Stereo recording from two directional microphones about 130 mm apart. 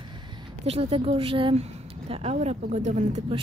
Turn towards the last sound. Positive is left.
turn(degrees=-65)  # may be behind; listen again after turning